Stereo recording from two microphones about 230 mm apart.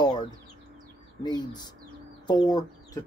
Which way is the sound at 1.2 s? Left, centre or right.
Centre.